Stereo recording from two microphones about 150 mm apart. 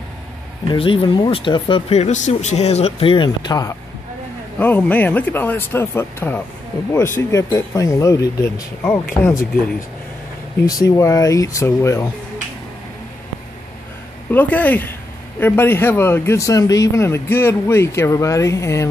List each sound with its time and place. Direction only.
0.7 s speech: 35° left (ahead or behind)
4.6 s speech: 10° left (ahead or behind)
10.7 s speech: 25° left (ahead or behind)
14.3 s speech: 10° left (ahead or behind)